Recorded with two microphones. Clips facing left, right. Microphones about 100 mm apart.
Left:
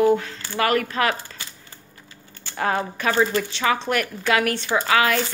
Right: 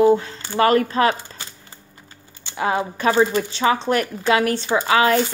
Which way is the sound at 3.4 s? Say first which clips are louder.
Right 3 dB; 30° right (ahead or behind).